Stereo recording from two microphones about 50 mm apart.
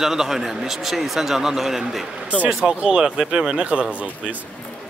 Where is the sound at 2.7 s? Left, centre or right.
Centre.